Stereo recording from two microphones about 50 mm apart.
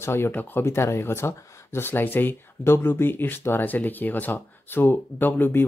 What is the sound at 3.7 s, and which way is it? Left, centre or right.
Speech, left.